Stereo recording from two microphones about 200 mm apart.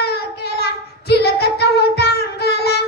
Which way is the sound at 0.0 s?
55° left (ahead or behind).